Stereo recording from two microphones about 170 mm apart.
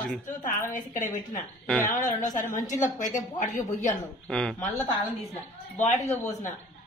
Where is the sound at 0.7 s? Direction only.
50° left (ahead or behind).